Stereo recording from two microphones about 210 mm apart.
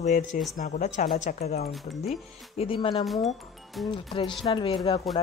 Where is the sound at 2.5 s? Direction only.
25° left (ahead or behind).